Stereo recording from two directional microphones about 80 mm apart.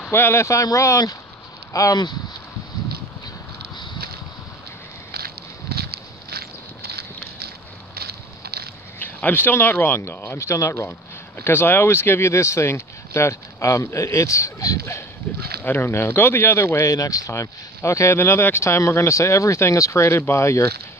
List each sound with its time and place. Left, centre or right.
0.1 s speech: left
9.0 s speech: left
10.9 s speech: left
15.6 s speech: left